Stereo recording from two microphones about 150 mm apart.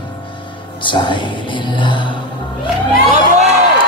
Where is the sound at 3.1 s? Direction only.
45° right (ahead or behind).